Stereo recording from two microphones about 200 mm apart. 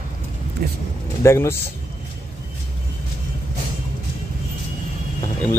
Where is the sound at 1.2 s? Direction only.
15° left (ahead or behind).